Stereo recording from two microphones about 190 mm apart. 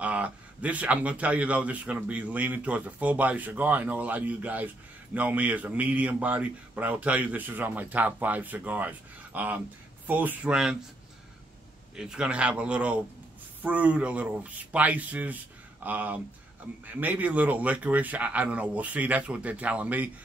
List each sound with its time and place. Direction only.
0.0 s speech: 5° right (ahead or behind)
12.0 s speech: 5° right (ahead or behind)